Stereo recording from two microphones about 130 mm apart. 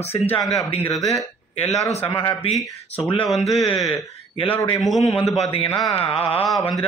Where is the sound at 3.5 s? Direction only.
45° left (ahead or behind).